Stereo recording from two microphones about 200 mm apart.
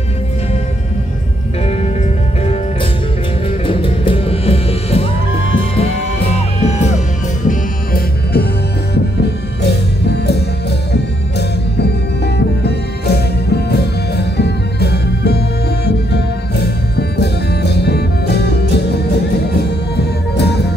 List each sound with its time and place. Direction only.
3.6 s music: 25° left (ahead or behind)
7.4 s music: 50° left (ahead or behind)
20.0 s music: 55° left (ahead or behind)